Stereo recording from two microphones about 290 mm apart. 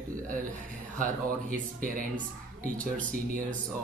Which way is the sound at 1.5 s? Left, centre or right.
Right.